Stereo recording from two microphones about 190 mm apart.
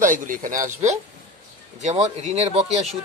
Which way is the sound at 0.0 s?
45° right (ahead or behind).